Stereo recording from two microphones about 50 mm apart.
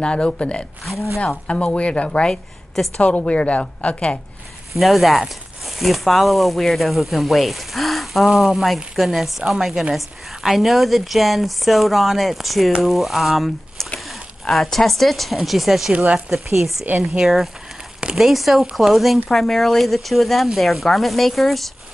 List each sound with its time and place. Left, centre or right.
0.0 s a woman's voice: centre
4.7 s speech: centre
16.8 s speech: right
17.2 s speech: centre